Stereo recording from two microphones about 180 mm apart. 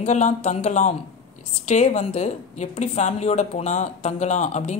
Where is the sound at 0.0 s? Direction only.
40° left (ahead or behind).